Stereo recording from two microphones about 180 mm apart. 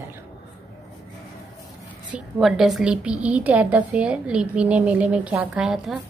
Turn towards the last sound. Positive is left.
turn(degrees=-5)  # may be behind; listen again after turning